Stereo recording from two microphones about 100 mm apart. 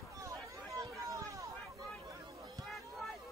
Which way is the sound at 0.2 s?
30° right (ahead or behind).